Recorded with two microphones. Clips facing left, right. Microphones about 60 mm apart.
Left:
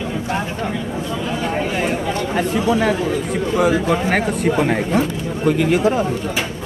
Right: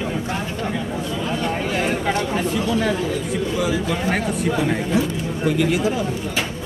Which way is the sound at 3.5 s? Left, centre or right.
Left.